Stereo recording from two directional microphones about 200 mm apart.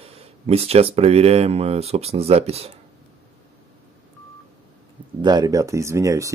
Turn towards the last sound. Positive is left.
turn(degrees=-15)  # may be behind; listen again after turning